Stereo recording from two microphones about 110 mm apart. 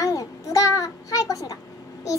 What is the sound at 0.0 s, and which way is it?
Child singing, 30° left (ahead or behind).